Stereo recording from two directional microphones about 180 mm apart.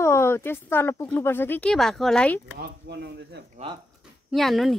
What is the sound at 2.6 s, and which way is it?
Speech, 65° right (ahead or behind).